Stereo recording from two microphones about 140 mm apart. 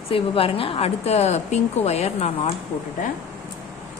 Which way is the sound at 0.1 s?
40° left (ahead or behind).